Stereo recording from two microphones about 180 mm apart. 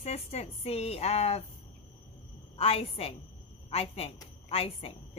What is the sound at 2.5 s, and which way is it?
A woman's voice, 30° left (ahead or behind).